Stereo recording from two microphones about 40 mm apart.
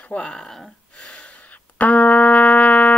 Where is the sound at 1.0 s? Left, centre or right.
Left.